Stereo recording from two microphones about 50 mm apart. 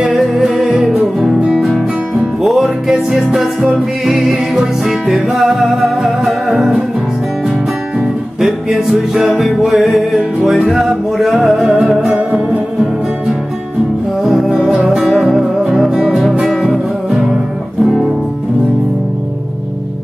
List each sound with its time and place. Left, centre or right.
0.1 s music: centre
8.0 s music: centre
11.6 s music: centre
14.2 s music: centre